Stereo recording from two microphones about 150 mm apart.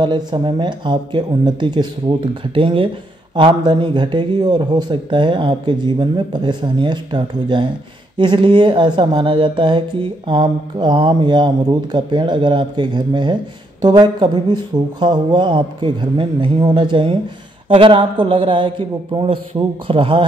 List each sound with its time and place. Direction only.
0.0 s a woman's voice: 30° right (ahead or behind)